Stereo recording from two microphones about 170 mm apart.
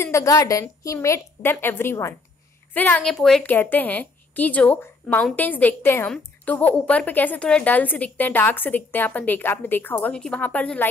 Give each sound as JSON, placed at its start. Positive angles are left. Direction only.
{"t": 0.0, "sound": "a woman's voice", "side_deg": 15}